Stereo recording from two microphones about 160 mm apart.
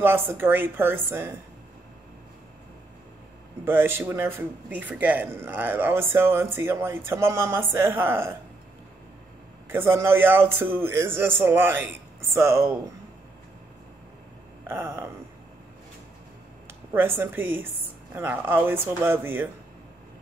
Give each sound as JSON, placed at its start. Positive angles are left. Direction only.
{"t": 0.0, "sound": "speech", "side_deg": -15}
{"t": 3.6, "sound": "speech", "side_deg": -15}
{"t": 9.7, "sound": "speech", "side_deg": -15}
{"t": 14.7, "sound": "speech", "side_deg": -15}
{"t": 16.9, "sound": "speech", "side_deg": -15}